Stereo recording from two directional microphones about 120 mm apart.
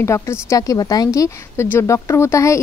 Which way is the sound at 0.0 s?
25° left (ahead or behind).